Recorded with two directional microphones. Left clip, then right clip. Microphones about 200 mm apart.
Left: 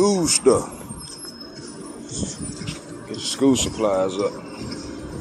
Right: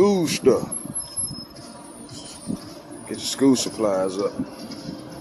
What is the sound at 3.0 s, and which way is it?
Speech, 25° right (ahead or behind).